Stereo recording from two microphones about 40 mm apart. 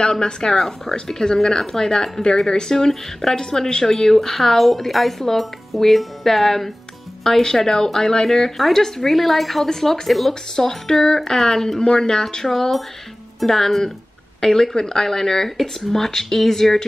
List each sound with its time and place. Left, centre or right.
0.0 s speech: centre
0.6 s a woman's voice: centre